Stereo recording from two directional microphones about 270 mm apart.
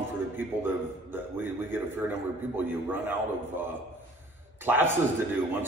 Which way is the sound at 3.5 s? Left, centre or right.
Centre.